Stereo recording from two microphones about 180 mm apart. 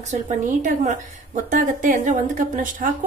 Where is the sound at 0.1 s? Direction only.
45° right (ahead or behind).